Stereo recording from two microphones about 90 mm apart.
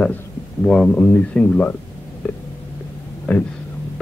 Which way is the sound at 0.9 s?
15° left (ahead or behind).